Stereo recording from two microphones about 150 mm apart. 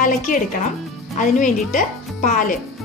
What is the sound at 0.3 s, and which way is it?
Speech, 60° left (ahead or behind).